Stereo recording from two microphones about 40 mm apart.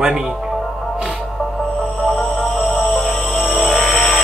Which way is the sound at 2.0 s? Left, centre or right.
Centre.